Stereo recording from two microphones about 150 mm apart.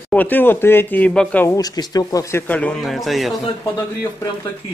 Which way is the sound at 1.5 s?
25° left (ahead or behind).